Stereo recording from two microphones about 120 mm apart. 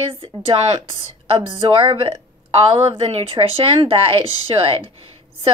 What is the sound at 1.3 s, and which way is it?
A woman's voice, 45° right (ahead or behind).